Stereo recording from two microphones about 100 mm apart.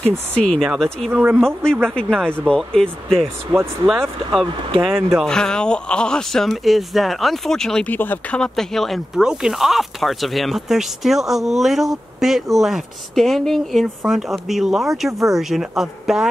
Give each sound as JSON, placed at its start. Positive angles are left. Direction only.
{"t": 0.3, "sound": "speech", "side_deg": 10}
{"t": 1.1, "sound": "speech", "side_deg": -10}
{"t": 1.4, "sound": "speech", "side_deg": 5}
{"t": 3.5, "sound": "speech", "side_deg": -50}
{"t": 4.8, "sound": "speech", "side_deg": 0}
{"t": 7.9, "sound": "speech", "side_deg": 20}
{"t": 8.4, "sound": "speech", "side_deg": 5}